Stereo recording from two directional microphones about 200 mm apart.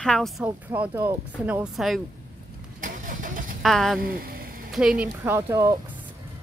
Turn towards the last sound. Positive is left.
turn(degrees=-15)  # may be behind; listen again after turning